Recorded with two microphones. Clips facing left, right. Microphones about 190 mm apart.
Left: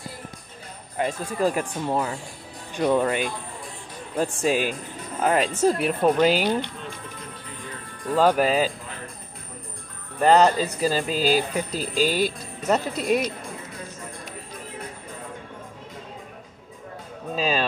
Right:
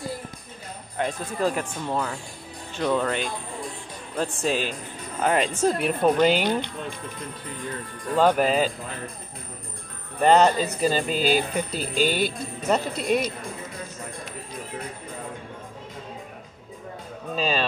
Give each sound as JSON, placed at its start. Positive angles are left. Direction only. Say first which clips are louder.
{"t": 0.9, "sound": "speech", "louder": "left 2 dB", "side_deg": 10}
{"t": 8.2, "sound": "speech", "louder": "even", "side_deg": 5}
{"t": 10.2, "sound": "speech", "louder": "even", "side_deg": 0}
{"t": 11.7, "sound": "speech", "louder": "left 1 dB", "side_deg": 40}
{"t": 12.6, "sound": "speech", "louder": "left 1 dB", "side_deg": 0}
{"t": 17.4, "sound": "music", "louder": "left 1 dB", "side_deg": 5}